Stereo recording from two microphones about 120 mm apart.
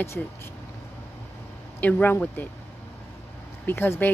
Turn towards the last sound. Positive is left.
turn(degrees=20)  # may be behind; listen again after turning